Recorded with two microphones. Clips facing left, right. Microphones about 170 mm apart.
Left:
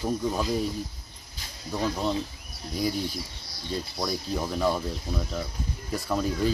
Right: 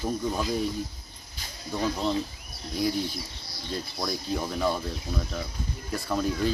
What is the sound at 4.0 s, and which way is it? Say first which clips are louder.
Speech: even; 5° left (ahead or behind).